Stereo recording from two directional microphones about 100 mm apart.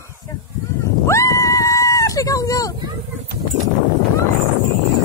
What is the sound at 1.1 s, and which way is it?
Screaming, 30° left (ahead or behind).